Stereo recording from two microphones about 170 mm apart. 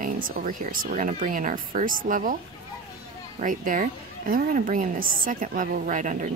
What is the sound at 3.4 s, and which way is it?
Speech, 50° right (ahead or behind).